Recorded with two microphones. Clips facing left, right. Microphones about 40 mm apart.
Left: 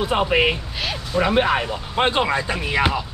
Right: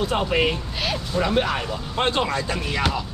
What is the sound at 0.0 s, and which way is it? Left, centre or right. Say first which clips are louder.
Speech: left 3 dB; centre.